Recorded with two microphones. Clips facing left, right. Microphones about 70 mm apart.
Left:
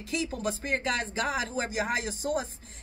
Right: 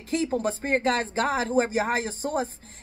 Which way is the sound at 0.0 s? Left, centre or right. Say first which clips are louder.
Right 6 dB; right.